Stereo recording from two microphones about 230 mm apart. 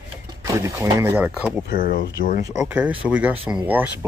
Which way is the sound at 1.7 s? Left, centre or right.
Left.